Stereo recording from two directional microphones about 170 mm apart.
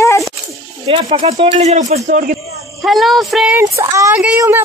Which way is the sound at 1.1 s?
35° right (ahead or behind).